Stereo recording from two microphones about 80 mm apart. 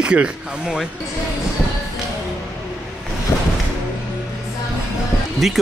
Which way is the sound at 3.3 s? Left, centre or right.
Left.